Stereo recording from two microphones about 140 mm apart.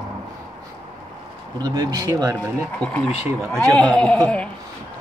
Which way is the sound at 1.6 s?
25° right (ahead or behind).